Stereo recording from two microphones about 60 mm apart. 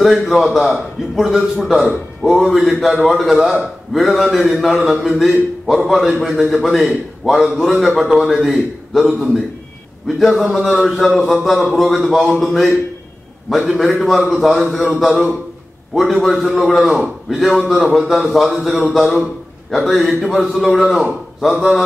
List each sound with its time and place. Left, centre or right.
0.0 s a man's voice: centre